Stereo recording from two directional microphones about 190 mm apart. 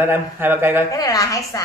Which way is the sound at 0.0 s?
10° right (ahead or behind).